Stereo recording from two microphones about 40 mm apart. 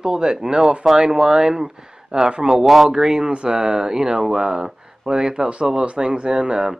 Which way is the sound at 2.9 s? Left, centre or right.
Centre.